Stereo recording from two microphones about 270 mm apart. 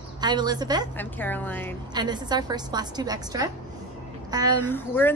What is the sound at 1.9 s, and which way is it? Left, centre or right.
A woman's voice, centre.